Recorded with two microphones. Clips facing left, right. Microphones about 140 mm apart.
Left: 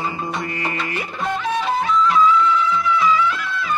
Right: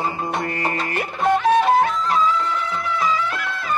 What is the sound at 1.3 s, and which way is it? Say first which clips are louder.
Music: right 6 dB; 50° right (ahead or behind).